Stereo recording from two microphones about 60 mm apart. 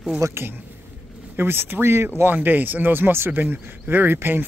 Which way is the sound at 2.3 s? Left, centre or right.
Right.